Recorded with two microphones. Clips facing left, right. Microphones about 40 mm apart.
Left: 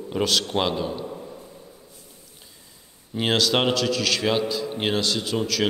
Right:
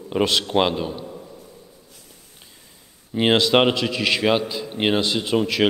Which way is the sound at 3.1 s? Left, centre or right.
Right.